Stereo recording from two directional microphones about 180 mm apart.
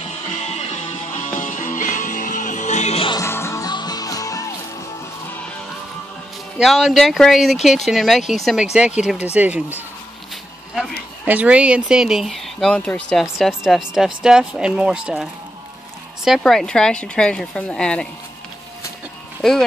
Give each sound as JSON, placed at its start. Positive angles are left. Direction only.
{"t": 0.3, "sound": "music", "side_deg": 40}
{"t": 3.2, "sound": "music", "side_deg": 15}
{"t": 6.6, "sound": "speech", "side_deg": 0}
{"t": 16.3, "sound": "speech", "side_deg": 0}
{"t": 19.4, "sound": "speech", "side_deg": 5}